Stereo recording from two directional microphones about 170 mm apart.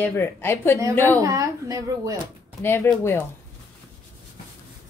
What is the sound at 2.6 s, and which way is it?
Speech, 15° left (ahead or behind).